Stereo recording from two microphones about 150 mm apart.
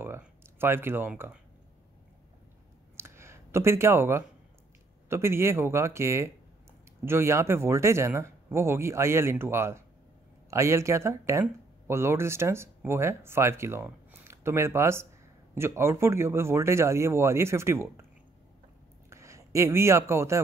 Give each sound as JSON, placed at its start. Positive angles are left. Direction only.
{"t": 0.0, "sound": "speech", "side_deg": -15}
{"t": 3.0, "sound": "a sound", "side_deg": -15}
{"t": 5.1, "sound": "speech", "side_deg": -15}
{"t": 19.0, "sound": "speech", "side_deg": -20}